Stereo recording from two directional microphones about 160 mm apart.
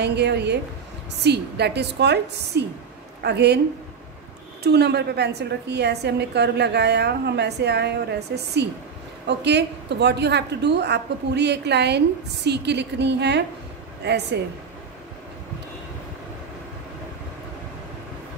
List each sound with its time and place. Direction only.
0.0 s a woman's voice: 90° right
4.6 s a woman's voice: 90° right